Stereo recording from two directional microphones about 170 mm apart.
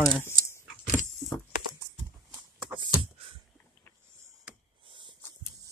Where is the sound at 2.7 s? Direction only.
30° right (ahead or behind).